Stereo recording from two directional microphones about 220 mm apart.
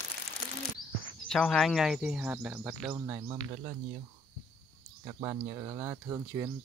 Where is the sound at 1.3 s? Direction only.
Centre (ahead or behind).